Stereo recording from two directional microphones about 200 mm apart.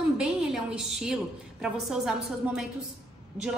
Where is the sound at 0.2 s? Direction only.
5° right (ahead or behind).